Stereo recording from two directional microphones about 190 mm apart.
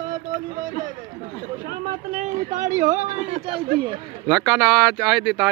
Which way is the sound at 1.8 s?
40° right (ahead or behind).